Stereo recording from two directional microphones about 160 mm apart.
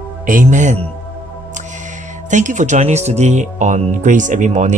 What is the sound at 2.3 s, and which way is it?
Speech, 50° right (ahead or behind).